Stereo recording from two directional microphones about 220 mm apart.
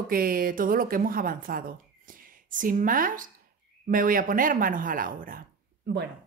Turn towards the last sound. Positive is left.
turn(degrees=-50)  # may be behind; listen again after turning